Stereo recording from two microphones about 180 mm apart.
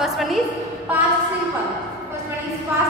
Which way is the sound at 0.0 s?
Centre (ahead or behind).